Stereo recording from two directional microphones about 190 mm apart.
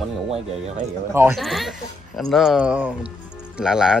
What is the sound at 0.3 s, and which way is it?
Speech, 35° right (ahead or behind).